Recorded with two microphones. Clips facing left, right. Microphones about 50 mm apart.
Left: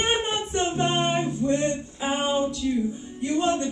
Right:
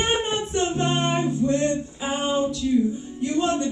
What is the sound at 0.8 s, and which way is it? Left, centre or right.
Music, centre.